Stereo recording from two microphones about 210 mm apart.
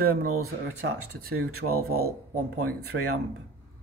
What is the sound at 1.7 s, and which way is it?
Speech, 45° right (ahead or behind).